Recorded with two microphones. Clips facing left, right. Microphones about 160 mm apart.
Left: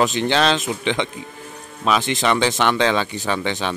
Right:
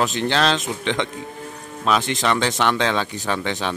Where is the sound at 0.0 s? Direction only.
Centre (ahead or behind).